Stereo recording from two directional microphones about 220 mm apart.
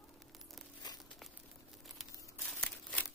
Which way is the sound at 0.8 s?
20° left (ahead or behind).